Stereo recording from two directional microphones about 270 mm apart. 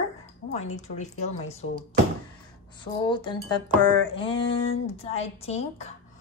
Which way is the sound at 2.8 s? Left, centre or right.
Centre.